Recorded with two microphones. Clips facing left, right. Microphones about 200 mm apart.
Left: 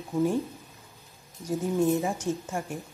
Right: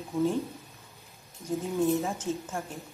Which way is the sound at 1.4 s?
15° left (ahead or behind).